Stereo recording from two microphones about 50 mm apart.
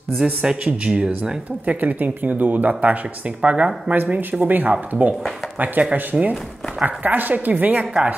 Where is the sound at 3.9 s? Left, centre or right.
Right.